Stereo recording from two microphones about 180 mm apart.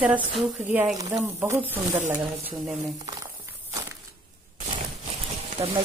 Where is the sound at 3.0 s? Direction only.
20° right (ahead or behind).